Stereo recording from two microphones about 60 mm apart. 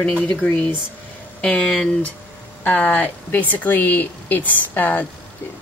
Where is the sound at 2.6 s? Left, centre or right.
Left.